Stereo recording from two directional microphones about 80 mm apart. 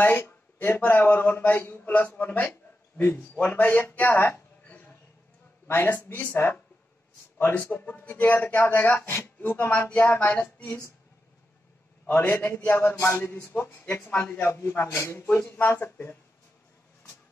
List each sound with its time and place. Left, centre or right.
0.0 s a man's voice: left
12.1 s speech: left
13.5 s speech: left
14.3 s a man's voice: left
15.3 s speech: left